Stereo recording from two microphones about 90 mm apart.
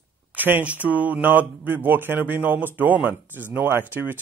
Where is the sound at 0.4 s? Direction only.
20° right (ahead or behind).